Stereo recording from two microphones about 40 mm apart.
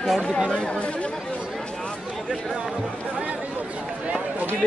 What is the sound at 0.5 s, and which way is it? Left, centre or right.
Speech, left.